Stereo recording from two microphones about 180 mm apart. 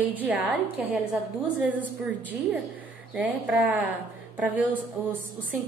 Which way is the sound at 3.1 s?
10° right (ahead or behind).